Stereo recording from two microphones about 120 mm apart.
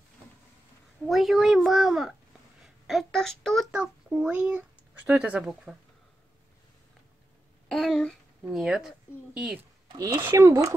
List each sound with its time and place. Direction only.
1.0 s a woman's voice: centre (ahead or behind)
3.7 s speech: 10° right (ahead or behind)
7.6 s speech: centre (ahead or behind)
9.9 s speech: 30° right (ahead or behind)